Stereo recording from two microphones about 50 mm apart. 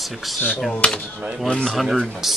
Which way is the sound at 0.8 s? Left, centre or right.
Left.